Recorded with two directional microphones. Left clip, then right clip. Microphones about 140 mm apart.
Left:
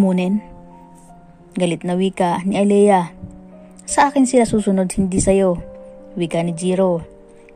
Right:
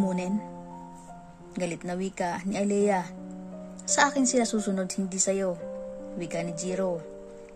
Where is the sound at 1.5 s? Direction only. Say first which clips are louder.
Left 12 dB; 35° left (ahead or behind).